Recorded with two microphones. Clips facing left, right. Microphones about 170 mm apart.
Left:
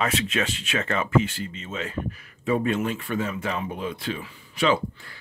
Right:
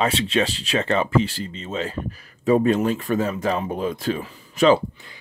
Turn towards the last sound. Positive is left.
turn(degrees=-40)  # may be behind; listen again after turning